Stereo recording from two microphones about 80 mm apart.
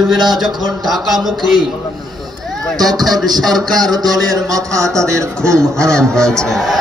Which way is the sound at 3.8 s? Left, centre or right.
Right.